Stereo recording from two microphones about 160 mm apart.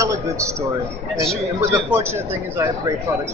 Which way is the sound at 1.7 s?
15° right (ahead or behind).